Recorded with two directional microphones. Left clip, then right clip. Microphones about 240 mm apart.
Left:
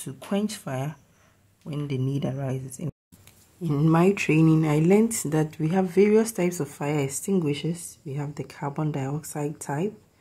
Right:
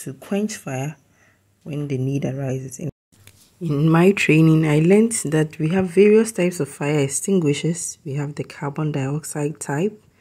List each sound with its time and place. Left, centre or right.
0.0 s speech: centre
3.6 s speech: centre